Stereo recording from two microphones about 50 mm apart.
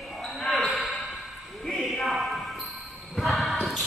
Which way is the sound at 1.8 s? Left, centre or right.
Centre.